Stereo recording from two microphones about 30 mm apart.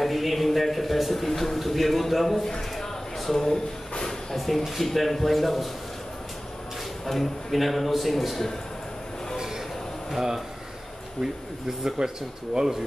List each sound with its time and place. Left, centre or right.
0.0 s a sound: centre
1.1 s a man's voice: centre
4.4 s a man's voice: centre
7.1 s a man's voice: centre
10.1 s speech: centre
12.0 s speech: right